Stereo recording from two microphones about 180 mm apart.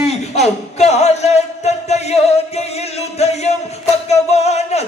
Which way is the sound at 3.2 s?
40° left (ahead or behind).